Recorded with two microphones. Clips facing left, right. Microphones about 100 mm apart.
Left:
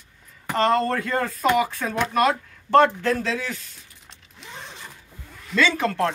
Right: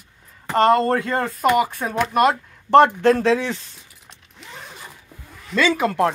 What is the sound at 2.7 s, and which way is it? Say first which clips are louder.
Speech: right 4 dB; 20° right (ahead or behind).